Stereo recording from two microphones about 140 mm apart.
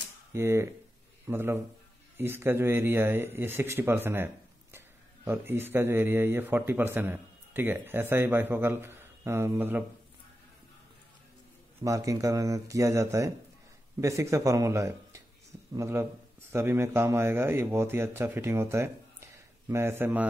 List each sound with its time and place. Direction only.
0.3 s a man's voice: 20° right (ahead or behind)
11.8 s speech: 25° right (ahead or behind)